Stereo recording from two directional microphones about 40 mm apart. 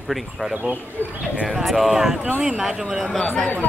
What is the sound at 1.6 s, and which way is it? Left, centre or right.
Speech, centre.